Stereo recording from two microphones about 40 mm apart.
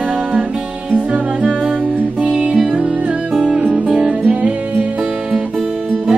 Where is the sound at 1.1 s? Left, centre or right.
Right.